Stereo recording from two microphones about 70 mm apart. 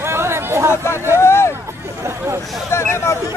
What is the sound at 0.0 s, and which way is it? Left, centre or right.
Chatter, right.